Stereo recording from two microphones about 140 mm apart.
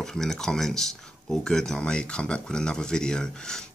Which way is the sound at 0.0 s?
5° left (ahead or behind).